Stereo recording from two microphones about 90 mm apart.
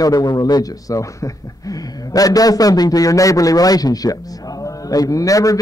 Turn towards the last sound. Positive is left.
turn(degrees=40)  # may be behind; listen again after turning